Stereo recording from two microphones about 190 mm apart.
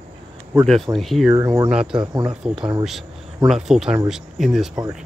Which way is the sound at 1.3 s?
20° right (ahead or behind).